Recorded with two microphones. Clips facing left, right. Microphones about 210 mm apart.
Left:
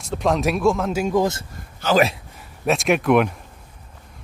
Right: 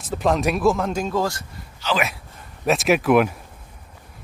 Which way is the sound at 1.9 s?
45° left (ahead or behind).